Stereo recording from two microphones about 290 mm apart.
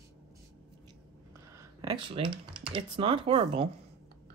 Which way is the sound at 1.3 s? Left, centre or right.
Centre.